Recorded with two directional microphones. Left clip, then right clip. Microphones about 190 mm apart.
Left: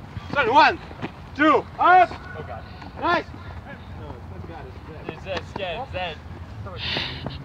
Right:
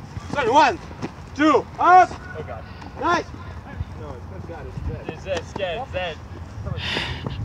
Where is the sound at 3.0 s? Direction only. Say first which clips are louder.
Right 1 dB; 15° left (ahead or behind).